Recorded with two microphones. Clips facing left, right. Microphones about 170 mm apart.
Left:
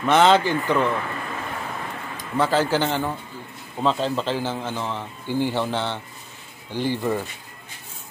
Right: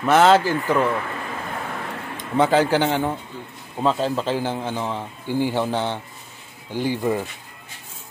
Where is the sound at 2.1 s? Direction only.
20° right (ahead or behind).